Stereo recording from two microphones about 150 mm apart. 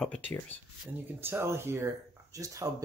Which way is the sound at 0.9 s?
15° right (ahead or behind).